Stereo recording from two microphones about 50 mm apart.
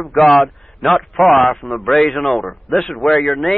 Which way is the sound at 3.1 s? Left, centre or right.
Centre.